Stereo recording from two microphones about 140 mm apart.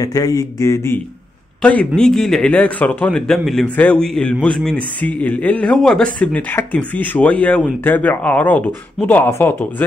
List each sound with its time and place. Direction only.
0.0 s speech: 25° left (ahead or behind)
1.6 s a man's voice: 10° left (ahead or behind)